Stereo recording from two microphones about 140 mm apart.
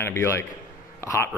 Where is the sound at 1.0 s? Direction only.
20° left (ahead or behind).